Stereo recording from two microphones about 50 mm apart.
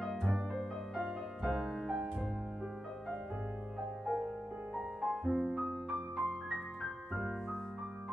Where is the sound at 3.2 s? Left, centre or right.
Centre.